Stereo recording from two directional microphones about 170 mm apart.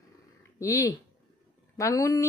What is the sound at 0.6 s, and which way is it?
Speech, 20° left (ahead or behind).